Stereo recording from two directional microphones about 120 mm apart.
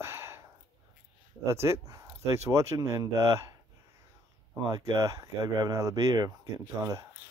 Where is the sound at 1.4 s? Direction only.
25° right (ahead or behind).